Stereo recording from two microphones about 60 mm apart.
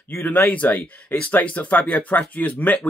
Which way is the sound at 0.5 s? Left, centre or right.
Left.